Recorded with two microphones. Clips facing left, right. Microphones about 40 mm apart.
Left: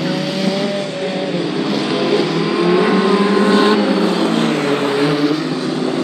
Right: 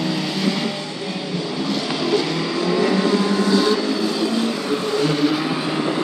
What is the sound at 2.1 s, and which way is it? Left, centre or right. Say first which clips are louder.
Vehicle: left 3 dB; left.